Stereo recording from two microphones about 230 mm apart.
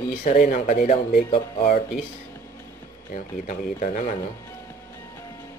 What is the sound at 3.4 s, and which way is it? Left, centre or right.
Speech, left.